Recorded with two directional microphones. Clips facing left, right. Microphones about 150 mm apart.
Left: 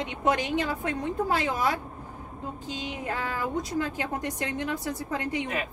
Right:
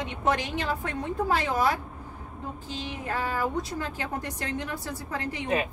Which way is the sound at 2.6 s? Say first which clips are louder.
Left 2 dB; 15° left (ahead or behind).